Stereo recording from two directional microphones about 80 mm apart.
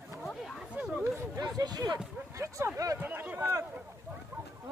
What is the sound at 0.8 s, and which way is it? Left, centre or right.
Chatter, right.